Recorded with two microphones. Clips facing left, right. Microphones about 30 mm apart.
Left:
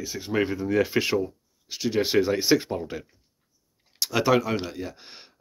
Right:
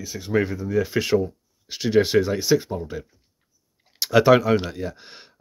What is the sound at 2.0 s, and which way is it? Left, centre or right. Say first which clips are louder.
Speech: right 3 dB; centre.